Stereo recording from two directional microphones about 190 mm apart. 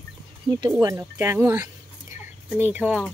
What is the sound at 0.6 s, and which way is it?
Speech, 20° right (ahead or behind).